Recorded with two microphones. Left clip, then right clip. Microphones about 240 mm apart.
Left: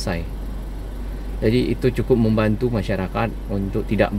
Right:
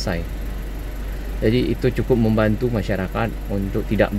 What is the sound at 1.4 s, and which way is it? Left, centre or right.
Speech, centre.